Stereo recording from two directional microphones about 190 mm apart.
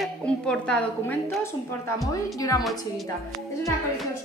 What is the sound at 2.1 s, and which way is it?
Speech, 20° left (ahead or behind).